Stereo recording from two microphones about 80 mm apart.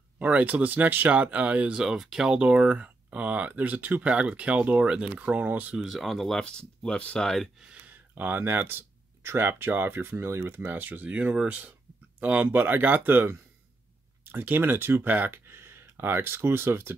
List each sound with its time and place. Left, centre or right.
0.2 s speech: centre
5.8 s speech: centre
7.6 s speech: centre